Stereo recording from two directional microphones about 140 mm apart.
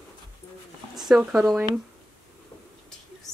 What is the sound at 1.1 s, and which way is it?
Speech, 5° right (ahead or behind).